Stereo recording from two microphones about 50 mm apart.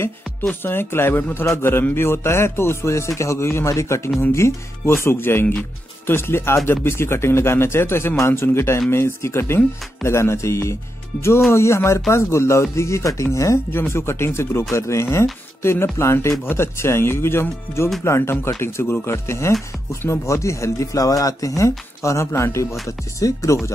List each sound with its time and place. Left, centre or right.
0.7 s speech: left
13.7 s speech: left
15.6 s speech: left